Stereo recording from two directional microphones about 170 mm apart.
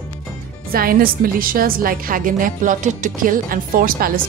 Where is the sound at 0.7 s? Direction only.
60° right (ahead or behind).